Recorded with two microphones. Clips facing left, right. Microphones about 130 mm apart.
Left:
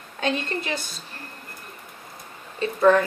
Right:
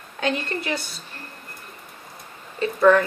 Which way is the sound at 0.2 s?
25° left (ahead or behind).